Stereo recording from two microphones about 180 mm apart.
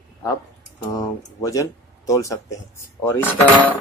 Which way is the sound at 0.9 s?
20° left (ahead or behind).